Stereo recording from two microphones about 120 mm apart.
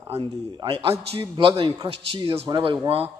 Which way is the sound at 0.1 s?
40° right (ahead or behind).